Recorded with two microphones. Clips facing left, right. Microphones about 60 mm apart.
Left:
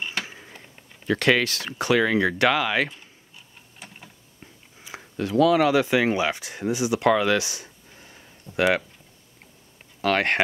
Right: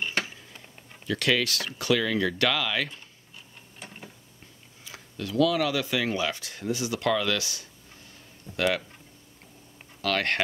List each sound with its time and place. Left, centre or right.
0.2 s a sound: left
1.0 s speech: left
5.1 s speech: left
10.0 s speech: left